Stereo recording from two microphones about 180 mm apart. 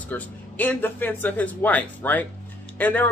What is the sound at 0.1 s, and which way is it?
Speech, 10° left (ahead or behind).